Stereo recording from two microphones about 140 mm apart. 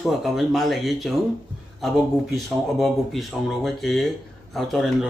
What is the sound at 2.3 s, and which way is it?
Speech, centre (ahead or behind).